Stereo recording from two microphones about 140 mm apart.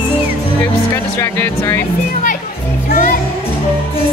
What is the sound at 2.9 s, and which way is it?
Music, 90° left.